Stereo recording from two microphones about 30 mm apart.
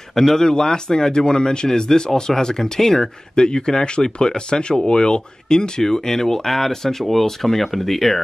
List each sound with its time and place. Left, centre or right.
0.1 s speech: centre
5.8 s speech: centre